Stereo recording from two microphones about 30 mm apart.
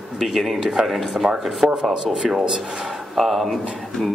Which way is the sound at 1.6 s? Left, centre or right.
Right.